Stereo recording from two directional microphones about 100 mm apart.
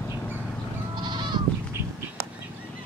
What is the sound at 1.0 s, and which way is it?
Goat, 50° right (ahead or behind).